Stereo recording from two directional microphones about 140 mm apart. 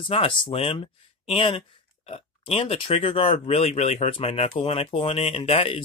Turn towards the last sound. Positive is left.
turn(degrees=45)  # may be behind; listen again after turning